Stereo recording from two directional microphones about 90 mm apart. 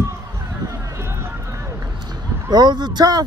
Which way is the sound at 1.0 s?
30° right (ahead or behind).